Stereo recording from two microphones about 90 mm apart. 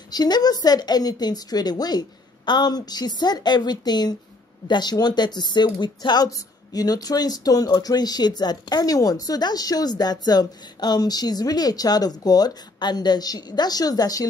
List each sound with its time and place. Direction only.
0.1 s speech: 50° left (ahead or behind)